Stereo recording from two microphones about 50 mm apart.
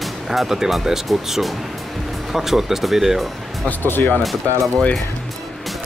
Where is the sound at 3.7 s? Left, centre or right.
Left.